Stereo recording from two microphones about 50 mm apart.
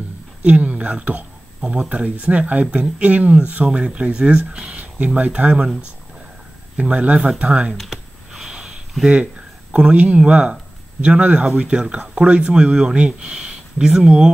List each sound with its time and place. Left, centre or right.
0.5 s speech: right
6.8 s speech: right
7.7 s speech: centre
8.3 s sniff: centre
9.1 s speech: right